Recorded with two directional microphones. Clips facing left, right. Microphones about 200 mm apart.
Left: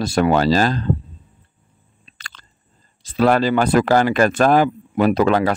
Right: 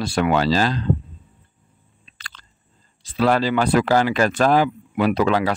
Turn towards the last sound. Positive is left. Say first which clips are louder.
# left 3 dB
turn(degrees=45)  # may be behind; listen again after turning